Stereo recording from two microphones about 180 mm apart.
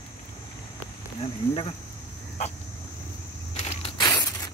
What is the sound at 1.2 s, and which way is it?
Speech, 30° left (ahead or behind).